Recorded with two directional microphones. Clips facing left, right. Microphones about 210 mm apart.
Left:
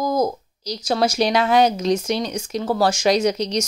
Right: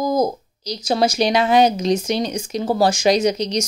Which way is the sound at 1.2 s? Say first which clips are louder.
Right 1 dB; centre (ahead or behind).